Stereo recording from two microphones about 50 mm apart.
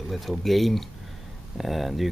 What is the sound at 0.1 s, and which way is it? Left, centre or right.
Speech, centre.